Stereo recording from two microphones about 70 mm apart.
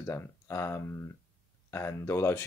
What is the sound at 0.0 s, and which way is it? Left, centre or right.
Speech, left.